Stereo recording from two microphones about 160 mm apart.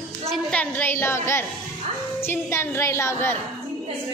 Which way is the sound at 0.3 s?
5° left (ahead or behind).